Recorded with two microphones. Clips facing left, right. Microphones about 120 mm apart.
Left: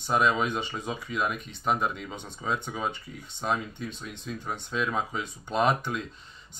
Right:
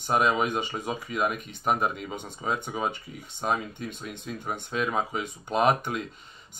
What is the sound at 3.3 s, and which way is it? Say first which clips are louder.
Speech: right 1 dB; 45° right (ahead or behind).